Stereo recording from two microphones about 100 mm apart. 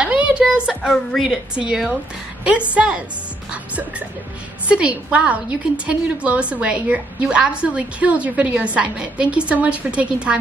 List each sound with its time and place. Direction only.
0.0 s a sound: 10° right (ahead or behind)
1.1 s a woman's voice: 5° right (ahead or behind)
4.6 s a woman's voice: 10° right (ahead or behind)